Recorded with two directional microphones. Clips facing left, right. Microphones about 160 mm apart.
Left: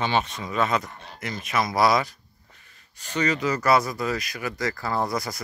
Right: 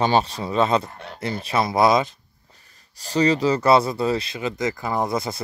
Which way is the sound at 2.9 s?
35° right (ahead or behind).